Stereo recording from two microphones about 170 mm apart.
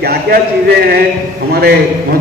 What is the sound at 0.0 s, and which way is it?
A man's voice, 65° right (ahead or behind).